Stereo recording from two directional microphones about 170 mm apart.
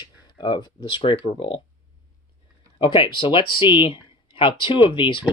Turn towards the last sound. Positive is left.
turn(degrees=30)  # may be behind; listen again after turning